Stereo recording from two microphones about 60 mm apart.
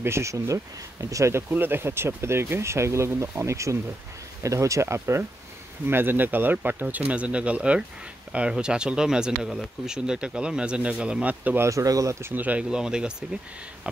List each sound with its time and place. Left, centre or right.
0.0 s speech: right
1.5 s speech: right
5.9 s speech: right
11.7 s speech: right
12.4 s speech: right
12.6 s speech: centre